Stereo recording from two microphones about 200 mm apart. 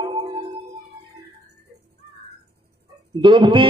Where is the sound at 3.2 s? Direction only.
25° right (ahead or behind).